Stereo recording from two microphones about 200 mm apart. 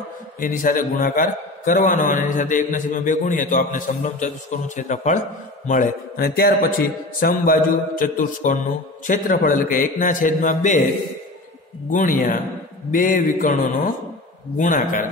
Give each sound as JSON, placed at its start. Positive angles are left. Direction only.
{"t": 0.4, "sound": "a man's voice", "side_deg": 45}
{"t": 11.9, "sound": "a man's voice", "side_deg": 40}
{"t": 14.6, "sound": "a man's voice", "side_deg": 40}